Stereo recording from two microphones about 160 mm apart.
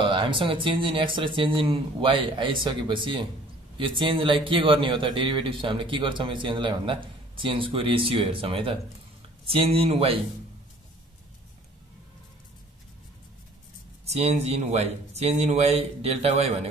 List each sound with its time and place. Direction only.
0.0 s a man's voice: 30° right (ahead or behind)
14.0 s a man's voice: 45° right (ahead or behind)